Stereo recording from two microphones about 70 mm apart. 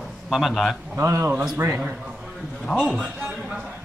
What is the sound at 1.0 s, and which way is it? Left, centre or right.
Speech, right.